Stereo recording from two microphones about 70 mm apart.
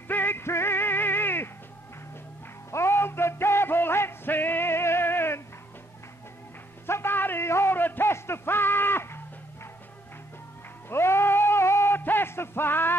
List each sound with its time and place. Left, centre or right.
0.1 s music: left
2.7 s music: left
6.9 s a sound: left
10.9 s music: left